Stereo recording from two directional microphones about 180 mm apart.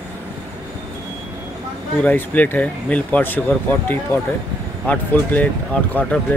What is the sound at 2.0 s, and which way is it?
Speech, 10° left (ahead or behind).